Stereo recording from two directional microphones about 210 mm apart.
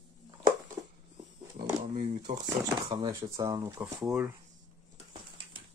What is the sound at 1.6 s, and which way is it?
Speech, 25° right (ahead or behind).